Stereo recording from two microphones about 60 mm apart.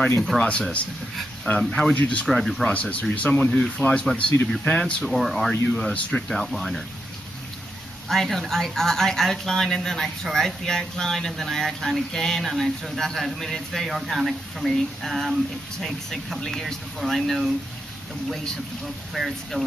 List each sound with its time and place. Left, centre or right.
0.5 s speech: centre
2.0 s speech: left
2.2 s speech: centre
2.7 s speech: left
5.0 s speech: centre
8.1 s speech: centre
19.1 s speech: centre